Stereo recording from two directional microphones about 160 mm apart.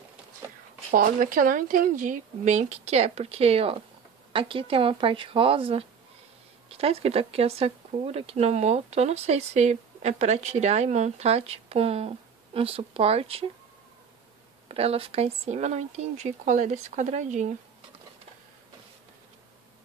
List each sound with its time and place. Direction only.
0.9 s speech: 60° right (ahead or behind); by 13.5 s 40° right (ahead or behind)
14.7 s speech: 40° right (ahead or behind)